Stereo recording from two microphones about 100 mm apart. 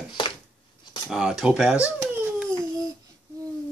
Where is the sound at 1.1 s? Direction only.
5° right (ahead or behind).